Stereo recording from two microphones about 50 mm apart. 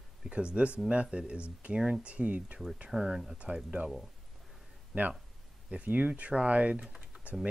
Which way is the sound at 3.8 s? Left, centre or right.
Right.